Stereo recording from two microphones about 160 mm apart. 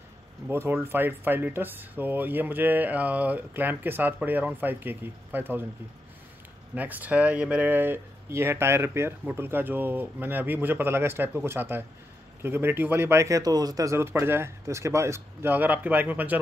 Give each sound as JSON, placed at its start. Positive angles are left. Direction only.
{"t": 0.5, "sound": "speech", "side_deg": -15}
{"t": 6.7, "sound": "speech", "side_deg": -10}